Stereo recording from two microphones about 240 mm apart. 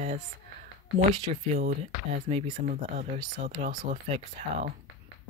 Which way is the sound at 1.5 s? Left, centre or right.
Right.